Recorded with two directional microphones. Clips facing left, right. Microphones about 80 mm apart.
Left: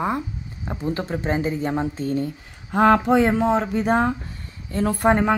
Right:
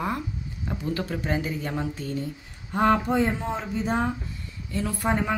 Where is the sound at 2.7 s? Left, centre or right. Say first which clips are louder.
Left 6 dB; left.